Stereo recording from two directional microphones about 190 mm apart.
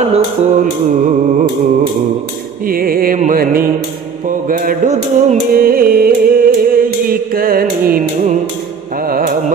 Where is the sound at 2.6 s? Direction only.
50° right (ahead or behind).